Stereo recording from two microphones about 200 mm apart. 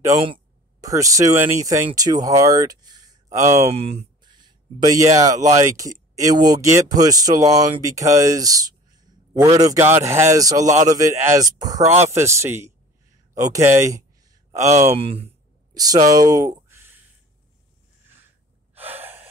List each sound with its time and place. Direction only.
0.2 s speech: 20° right (ahead or behind)
3.5 s speech: 30° right (ahead or behind); by 13.8 s 15° right (ahead or behind)
14.7 s speech: 35° right (ahead or behind); by 16.8 s 15° right (ahead or behind)
18.9 s gasp: 30° right (ahead or behind)